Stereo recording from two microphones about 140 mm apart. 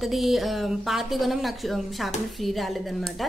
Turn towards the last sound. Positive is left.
turn(degrees=0)  # may be behind; listen again after turning